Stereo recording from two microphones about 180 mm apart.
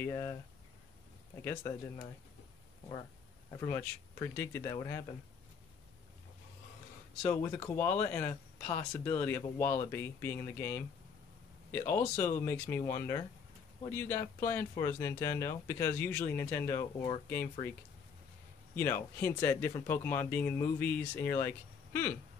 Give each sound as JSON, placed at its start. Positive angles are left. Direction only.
{"t": 0.0, "sound": "speech", "side_deg": 20}
{"t": 1.4, "sound": "speech", "side_deg": 15}
{"t": 3.6, "sound": "speech", "side_deg": 10}
{"t": 7.2, "sound": "speech", "side_deg": 10}
{"t": 18.8, "sound": "speech", "side_deg": 15}